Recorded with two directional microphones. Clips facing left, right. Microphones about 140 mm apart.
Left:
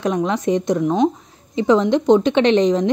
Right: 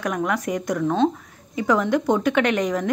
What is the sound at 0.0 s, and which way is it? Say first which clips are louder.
Speech: left 5 dB; 25° left (ahead or behind).